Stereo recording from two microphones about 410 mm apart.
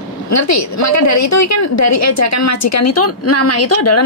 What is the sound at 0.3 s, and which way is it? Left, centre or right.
A woman's voice, left.